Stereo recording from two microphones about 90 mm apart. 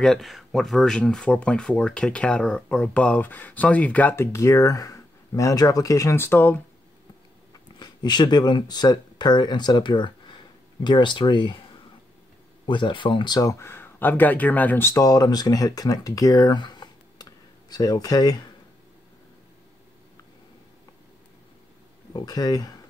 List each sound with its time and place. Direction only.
0.0 s speech: 5° left (ahead or behind)
4.1 s speech: 30° left (ahead or behind)
6.1 s speech: 25° left (ahead or behind)
7.6 s speech: 55° left (ahead or behind)
12.6 s speech: 65° left (ahead or behind)
13.4 s speech: 35° left (ahead or behind); by 14.9 s 20° left (ahead or behind)
14.9 s speech: 40° left (ahead or behind)
16.5 s a sound: 55° left (ahead or behind)
22.1 s speech: 45° left (ahead or behind)